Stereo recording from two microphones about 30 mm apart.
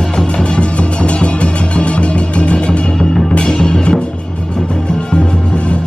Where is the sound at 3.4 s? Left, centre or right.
Left.